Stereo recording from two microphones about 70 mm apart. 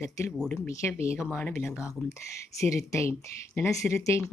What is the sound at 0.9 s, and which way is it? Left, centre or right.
Speech, left.